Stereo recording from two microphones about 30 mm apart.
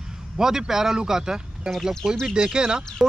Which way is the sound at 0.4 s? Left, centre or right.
Centre.